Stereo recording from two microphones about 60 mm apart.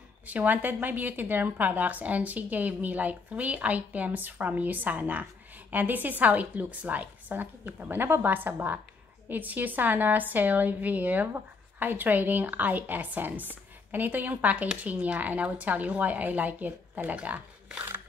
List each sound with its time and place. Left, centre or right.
0.3 s a woman's voice: right